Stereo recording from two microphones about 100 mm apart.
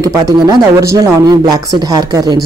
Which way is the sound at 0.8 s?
30° right (ahead or behind).